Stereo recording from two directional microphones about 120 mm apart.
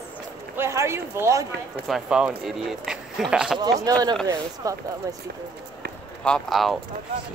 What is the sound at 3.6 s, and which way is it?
Speech, 30° right (ahead or behind).